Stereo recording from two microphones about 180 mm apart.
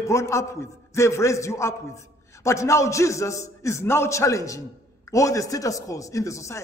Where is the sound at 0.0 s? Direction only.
15° left (ahead or behind).